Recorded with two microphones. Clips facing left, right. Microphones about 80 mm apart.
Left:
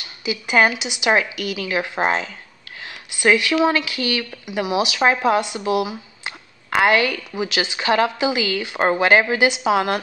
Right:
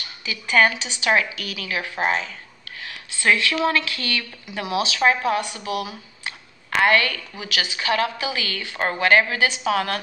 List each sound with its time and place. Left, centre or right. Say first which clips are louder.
0.2 s a woman's voice: left 2 dB; centre
2.8 s a woman's voice: left 5 dB; centre